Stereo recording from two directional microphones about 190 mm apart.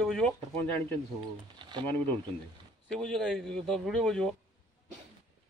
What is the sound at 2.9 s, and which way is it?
A man's voice, centre (ahead or behind).